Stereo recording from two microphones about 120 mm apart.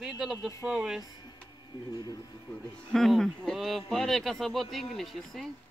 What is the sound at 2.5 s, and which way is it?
Speech, 5° left (ahead or behind).